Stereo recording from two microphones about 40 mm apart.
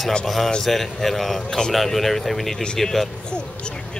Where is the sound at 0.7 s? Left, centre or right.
Centre.